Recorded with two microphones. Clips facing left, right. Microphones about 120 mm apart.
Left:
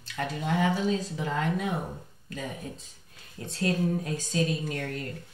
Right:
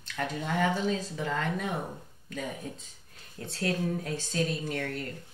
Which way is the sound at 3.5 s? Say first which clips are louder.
Left 3 dB; 20° left (ahead or behind).